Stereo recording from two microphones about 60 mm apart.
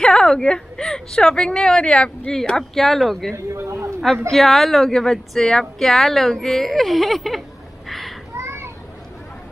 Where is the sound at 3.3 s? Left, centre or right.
Right.